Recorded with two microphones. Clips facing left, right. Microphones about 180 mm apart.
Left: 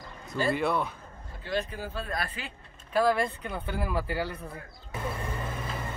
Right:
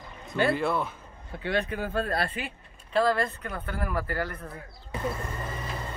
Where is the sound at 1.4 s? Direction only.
65° right (ahead or behind).